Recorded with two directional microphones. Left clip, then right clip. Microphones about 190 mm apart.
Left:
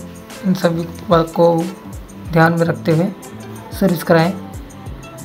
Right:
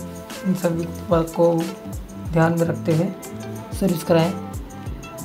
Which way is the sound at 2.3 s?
20° left (ahead or behind).